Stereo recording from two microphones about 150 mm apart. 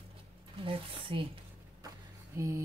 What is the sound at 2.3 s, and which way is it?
Speech, 20° right (ahead or behind).